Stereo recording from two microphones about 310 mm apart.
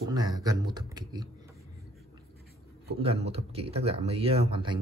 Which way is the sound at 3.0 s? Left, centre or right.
Centre.